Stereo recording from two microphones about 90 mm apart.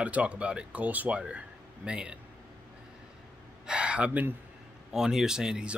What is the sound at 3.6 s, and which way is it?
Speech, 15° right (ahead or behind).